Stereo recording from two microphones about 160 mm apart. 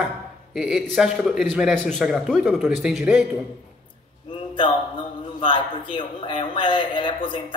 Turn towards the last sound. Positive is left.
turn(degrees=30)  # may be behind; listen again after turning